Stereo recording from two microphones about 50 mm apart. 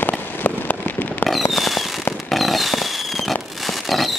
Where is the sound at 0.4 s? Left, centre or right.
Left.